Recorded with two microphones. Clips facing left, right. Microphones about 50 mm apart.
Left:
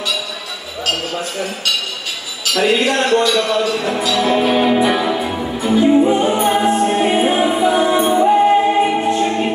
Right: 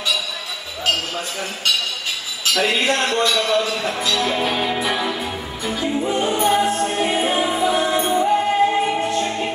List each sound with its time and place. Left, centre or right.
3.0 s a man's voice: centre
3.3 s music: centre